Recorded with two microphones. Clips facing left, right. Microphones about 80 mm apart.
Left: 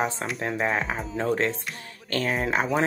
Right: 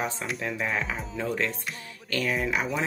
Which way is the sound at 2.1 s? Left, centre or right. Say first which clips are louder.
Left 2 dB; left.